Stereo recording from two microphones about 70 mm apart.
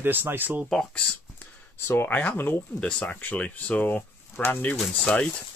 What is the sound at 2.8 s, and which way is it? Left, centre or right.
Speech, centre.